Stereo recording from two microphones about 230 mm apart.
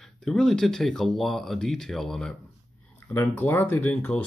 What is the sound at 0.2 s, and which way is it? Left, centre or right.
Speech, centre.